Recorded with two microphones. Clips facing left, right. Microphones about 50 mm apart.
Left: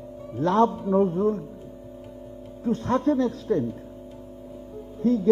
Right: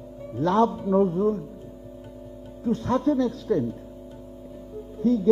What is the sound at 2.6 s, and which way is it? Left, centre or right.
A man's voice, left.